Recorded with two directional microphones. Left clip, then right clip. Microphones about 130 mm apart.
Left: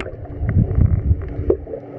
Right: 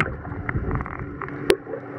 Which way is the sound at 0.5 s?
20° left (ahead or behind).